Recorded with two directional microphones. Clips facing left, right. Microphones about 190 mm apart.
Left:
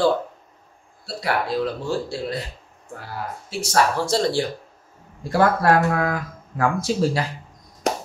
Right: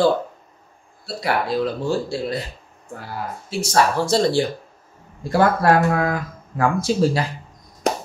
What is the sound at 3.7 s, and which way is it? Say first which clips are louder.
Speech: right 2 dB; 20° right (ahead or behind).